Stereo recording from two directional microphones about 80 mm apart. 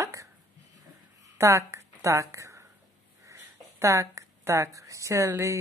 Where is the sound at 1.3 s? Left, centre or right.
Right.